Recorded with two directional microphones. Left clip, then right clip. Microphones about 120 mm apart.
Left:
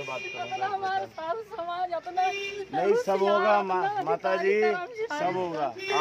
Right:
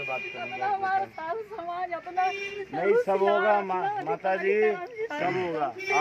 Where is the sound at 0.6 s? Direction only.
30° left (ahead or behind).